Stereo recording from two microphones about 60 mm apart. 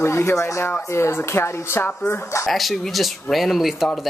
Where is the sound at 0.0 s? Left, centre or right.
Left.